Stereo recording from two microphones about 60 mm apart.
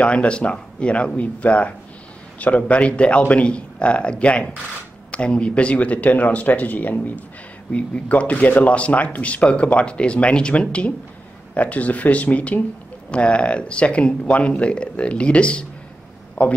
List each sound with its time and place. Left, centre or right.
0.0 s speech: centre